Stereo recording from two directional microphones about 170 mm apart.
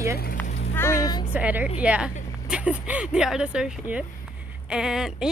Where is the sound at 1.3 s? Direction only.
10° right (ahead or behind).